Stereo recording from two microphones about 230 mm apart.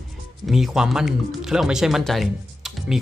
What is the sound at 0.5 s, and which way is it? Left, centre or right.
Speech, centre.